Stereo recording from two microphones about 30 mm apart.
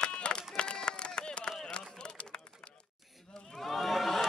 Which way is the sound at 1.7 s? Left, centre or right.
Left.